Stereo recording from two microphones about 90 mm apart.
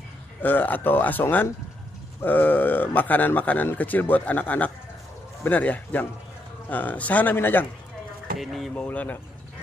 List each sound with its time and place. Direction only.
0.4 s speech: 20° left (ahead or behind)
8.4 s speech: centre (ahead or behind)
8.7 s speech: 15° left (ahead or behind)